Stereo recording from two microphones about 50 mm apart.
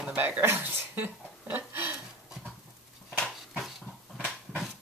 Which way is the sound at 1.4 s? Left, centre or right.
Right.